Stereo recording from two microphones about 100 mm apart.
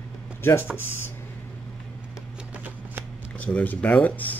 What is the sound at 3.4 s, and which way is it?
Speech, 15° left (ahead or behind).